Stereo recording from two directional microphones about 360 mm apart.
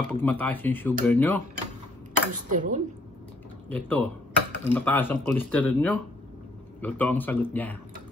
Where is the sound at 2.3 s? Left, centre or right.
Right.